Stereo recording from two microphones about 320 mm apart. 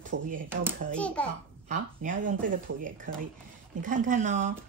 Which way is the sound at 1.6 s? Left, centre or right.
Right.